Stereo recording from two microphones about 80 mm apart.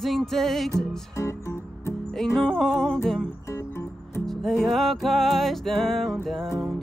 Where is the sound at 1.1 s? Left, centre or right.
Left.